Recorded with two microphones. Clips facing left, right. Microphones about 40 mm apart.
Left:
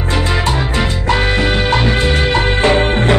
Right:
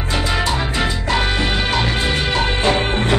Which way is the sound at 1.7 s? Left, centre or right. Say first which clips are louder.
Left 5 dB; centre.